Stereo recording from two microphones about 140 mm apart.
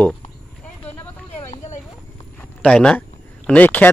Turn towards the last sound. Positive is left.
turn(degrees=10)  # may be behind; listen again after turning